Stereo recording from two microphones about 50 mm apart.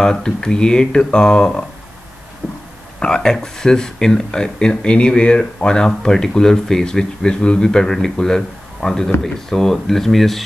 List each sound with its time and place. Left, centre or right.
0.0 s speech: centre
3.0 s speech: centre